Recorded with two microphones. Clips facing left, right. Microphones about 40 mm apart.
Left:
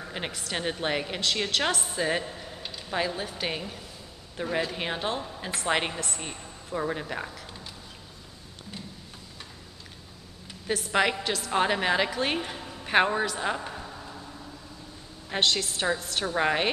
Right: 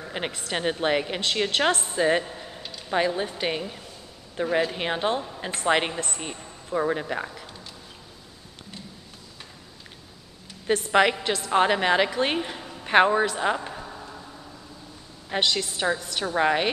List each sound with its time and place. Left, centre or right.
0.2 s a woman's voice: centre
1.2 s a woman's voice: right
1.7 s a woman's voice: right
2.0 s a woman's voice: centre
5.9 s a woman's voice: right
6.2 s speech: centre
10.9 s a woman's voice: centre
13.2 s a sound: centre
15.2 s a woman's voice: centre